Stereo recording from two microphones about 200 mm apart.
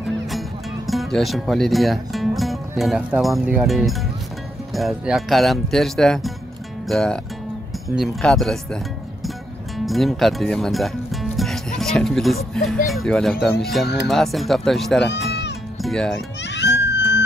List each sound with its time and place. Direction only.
0.8 s speech: centre (ahead or behind)
9.8 s speech: centre (ahead or behind)
11.3 s music: centre (ahead or behind)
12.8 s a child's voice: centre (ahead or behind)
16.4 s music: 60° left (ahead or behind)